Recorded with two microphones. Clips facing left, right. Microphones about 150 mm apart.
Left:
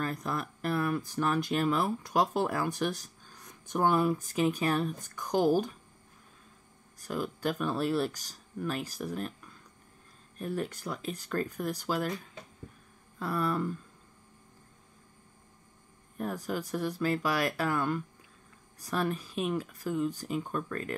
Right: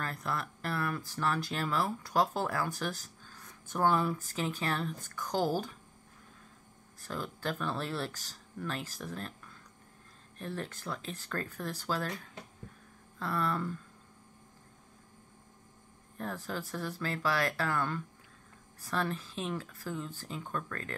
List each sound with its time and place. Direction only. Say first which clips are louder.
0.0 s speech: left 3 dB; 20° left (ahead or behind)
7.0 s speech: left 5 dB; 15° left (ahead or behind)
13.2 s speech: left 3 dB; 15° left (ahead or behind)
16.2 s speech: left 4 dB; 15° left (ahead or behind)